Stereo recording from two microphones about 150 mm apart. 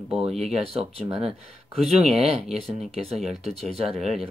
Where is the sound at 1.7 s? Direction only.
45° right (ahead or behind).